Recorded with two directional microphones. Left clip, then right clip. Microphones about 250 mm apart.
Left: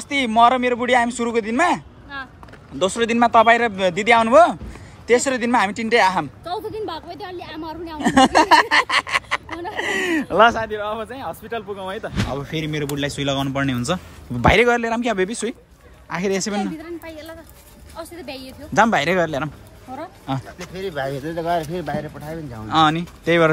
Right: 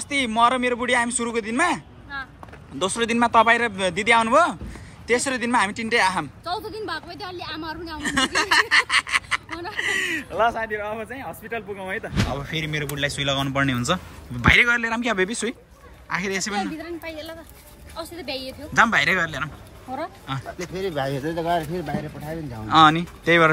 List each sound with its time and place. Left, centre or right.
0.1 s a woman's voice: centre
8.0 s speech: left
10.6 s speech: centre
16.7 s a woman's voice: centre
18.7 s speech: centre
20.7 s speech: right
21.3 s speech: centre